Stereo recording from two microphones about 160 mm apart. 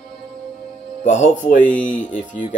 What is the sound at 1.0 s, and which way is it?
Speech, 50° left (ahead or behind).